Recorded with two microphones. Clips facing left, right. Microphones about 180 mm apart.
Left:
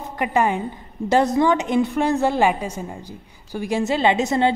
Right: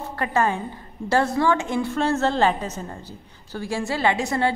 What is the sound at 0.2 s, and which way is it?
A woman's voice, 15° left (ahead or behind).